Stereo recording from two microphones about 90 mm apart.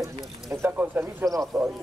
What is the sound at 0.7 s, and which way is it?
Speech, 20° right (ahead or behind).